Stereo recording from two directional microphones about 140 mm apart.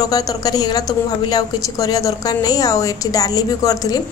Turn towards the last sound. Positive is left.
turn(degrees=25)  # may be behind; listen again after turning